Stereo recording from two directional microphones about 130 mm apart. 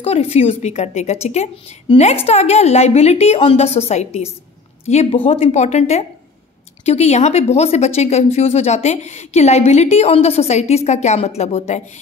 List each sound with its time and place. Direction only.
0.0 s speech: 50° left (ahead or behind)